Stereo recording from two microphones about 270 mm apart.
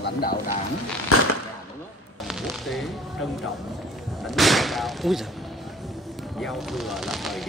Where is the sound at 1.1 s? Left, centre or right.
Left.